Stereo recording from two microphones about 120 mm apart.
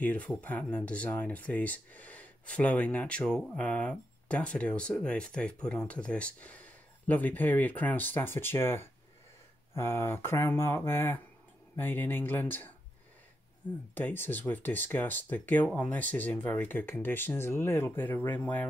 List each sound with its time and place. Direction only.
0.0 s speech: 10° left (ahead or behind)
13.9 s speech: 15° left (ahead or behind)